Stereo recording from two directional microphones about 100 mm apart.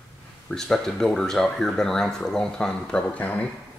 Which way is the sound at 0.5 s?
5° left (ahead or behind).